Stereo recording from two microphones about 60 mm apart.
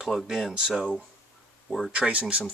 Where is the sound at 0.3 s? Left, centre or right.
Centre.